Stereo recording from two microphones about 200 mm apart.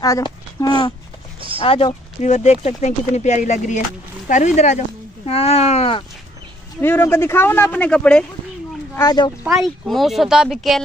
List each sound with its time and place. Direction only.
0.0 s a child's voice: 15° left (ahead or behind)
6.8 s speech: 10° left (ahead or behind)
8.9 s speech: 20° left (ahead or behind)
9.4 s speech: centre (ahead or behind)